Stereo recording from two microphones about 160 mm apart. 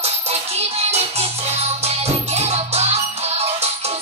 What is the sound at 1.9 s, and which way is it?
Music, 40° right (ahead or behind).